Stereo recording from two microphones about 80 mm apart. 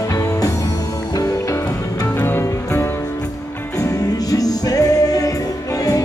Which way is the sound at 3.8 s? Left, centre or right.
Left.